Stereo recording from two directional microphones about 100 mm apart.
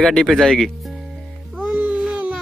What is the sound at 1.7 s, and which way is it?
Babbling, 15° right (ahead or behind).